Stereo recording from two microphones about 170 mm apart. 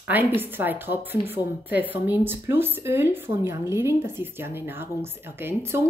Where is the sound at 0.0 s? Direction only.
10° right (ahead or behind).